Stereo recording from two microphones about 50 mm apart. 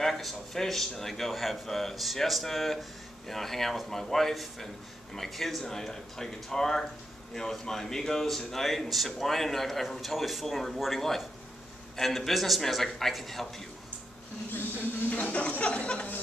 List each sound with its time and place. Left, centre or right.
0.0 s speech: centre
14.5 s a sound: left
15.0 s speech: left